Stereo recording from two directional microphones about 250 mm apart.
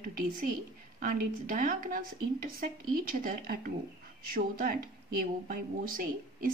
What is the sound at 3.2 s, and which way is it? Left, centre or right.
Speech, right.